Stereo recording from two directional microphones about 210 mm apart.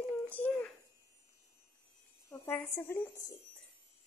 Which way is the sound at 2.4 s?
10° left (ahead or behind).